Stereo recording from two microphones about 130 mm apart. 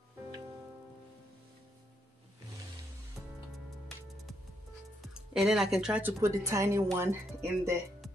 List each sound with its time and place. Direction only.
5.0 s speech: 5° right (ahead or behind)
6.2 s speech: 20° right (ahead or behind)